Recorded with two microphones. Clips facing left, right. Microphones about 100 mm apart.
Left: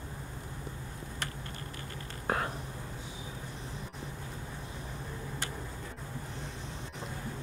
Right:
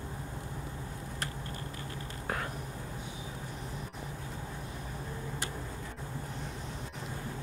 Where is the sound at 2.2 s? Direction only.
40° left (ahead or behind).